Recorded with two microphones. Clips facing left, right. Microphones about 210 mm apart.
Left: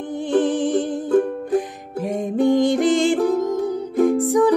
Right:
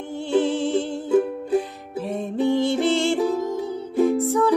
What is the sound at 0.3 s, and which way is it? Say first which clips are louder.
Music: left 2 dB; 15° left (ahead or behind).